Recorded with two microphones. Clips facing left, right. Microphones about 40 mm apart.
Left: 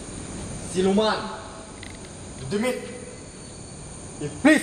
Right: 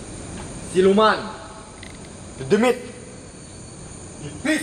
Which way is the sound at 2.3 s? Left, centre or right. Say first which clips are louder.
Right 8 dB; right.